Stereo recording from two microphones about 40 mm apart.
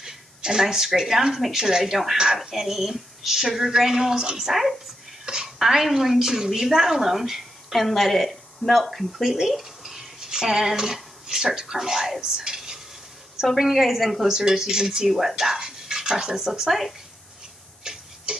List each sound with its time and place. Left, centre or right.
0.0 s a woman's voice: centre
12.5 s stir: centre
13.4 s a woman's voice: centre
14.3 s a woman's voice: centre
17.8 s a sound: centre